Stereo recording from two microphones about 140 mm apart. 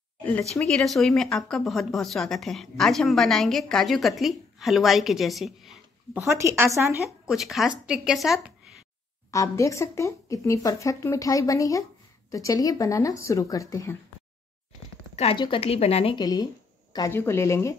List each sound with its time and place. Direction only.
0.2 s a sound: 15° left (ahead or behind)
0.7 s a woman's voice: 5° left (ahead or behind)
6.1 s a woman's voice: 20° right (ahead or behind)
7.2 s a woman's voice: centre (ahead or behind)
9.3 s speech: 20° left (ahead or behind)
15.3 s speech: 35° left (ahead or behind)
16.2 s speech: 30° left (ahead or behind)
17.1 s speech: 15° left (ahead or behind)